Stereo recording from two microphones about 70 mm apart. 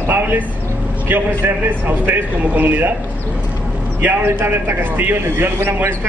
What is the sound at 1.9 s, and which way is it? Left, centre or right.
Speech, right.